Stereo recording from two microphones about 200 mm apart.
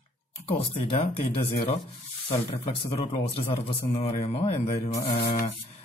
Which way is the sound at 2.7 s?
30° left (ahead or behind).